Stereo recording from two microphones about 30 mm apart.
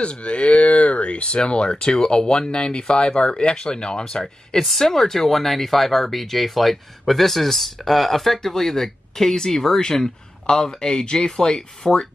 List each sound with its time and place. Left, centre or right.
0.0 s speech: left